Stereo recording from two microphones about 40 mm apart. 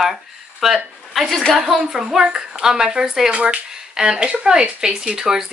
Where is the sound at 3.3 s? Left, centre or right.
Right.